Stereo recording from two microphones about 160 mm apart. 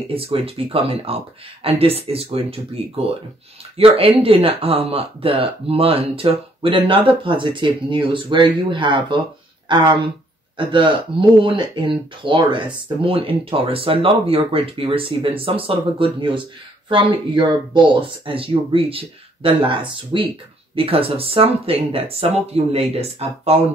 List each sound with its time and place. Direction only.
0.1 s speech: 35° right (ahead or behind)
3.7 s speech: 35° right (ahead or behind)